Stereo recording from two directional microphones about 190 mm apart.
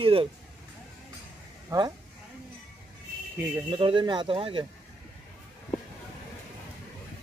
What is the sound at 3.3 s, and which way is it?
Speech, 15° right (ahead or behind).